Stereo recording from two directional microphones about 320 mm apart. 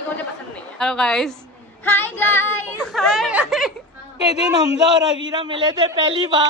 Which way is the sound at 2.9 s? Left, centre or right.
Centre.